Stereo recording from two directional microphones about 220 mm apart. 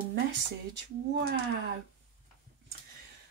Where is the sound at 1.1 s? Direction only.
45° right (ahead or behind).